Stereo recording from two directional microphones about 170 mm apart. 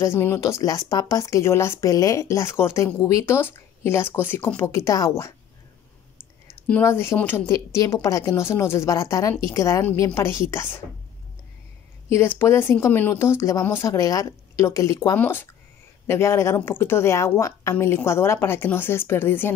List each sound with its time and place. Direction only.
0.0 s speech: 15° left (ahead or behind)
6.7 s speech: 15° left (ahead or behind)
12.1 s speech: 15° left (ahead or behind)